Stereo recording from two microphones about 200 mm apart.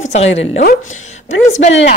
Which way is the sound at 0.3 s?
70° left (ahead or behind).